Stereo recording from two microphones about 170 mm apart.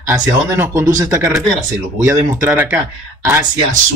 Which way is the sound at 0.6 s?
15° right (ahead or behind).